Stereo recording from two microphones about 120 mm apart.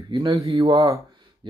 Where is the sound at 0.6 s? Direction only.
30° right (ahead or behind).